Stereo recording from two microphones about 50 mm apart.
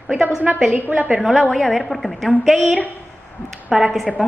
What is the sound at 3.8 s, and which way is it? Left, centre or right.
Speech, centre.